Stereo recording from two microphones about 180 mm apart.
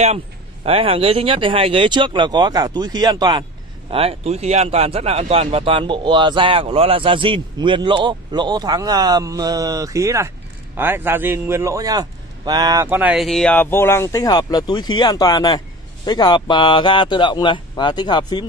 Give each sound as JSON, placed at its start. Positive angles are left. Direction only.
{"t": 0.7, "sound": "a man's voice", "side_deg": -30}